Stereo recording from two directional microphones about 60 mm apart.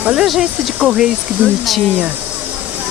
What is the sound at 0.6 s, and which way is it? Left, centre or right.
Speech, centre.